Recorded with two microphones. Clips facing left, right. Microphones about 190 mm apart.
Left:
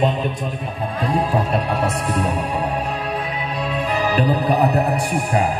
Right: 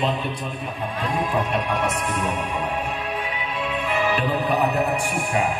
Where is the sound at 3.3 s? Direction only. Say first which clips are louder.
Left 4 dB; 35° left (ahead or behind).